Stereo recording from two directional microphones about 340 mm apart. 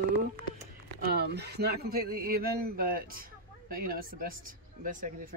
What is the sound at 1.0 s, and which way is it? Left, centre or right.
A man's voice, right.